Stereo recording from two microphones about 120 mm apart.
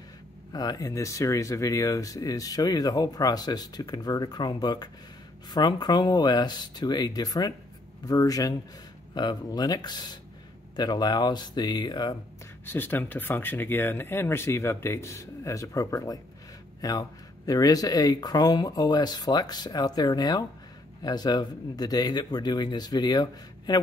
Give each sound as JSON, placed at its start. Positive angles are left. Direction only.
{"t": 0.5, "sound": "speech", "side_deg": 35}
{"t": 12.6, "sound": "speech", "side_deg": 15}